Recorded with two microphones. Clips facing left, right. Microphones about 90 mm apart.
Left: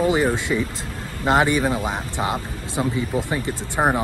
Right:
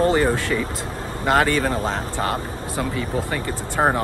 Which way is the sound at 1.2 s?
20° left (ahead or behind).